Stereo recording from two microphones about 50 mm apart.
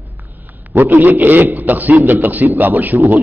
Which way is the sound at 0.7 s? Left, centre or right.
Right.